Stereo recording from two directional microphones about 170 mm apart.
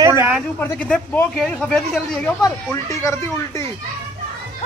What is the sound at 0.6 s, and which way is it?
Speech, 10° left (ahead or behind).